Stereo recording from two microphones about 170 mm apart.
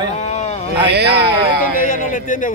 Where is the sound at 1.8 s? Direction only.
50° left (ahead or behind).